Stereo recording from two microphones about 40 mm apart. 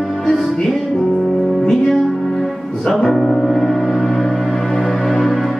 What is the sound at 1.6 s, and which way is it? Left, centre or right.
Music, centre.